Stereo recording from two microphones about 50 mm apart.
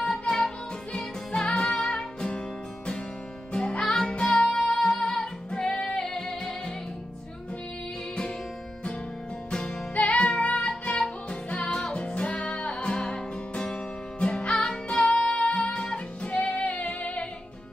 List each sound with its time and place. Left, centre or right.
0.0 s music: centre
3.5 s music: centre
9.5 s music: left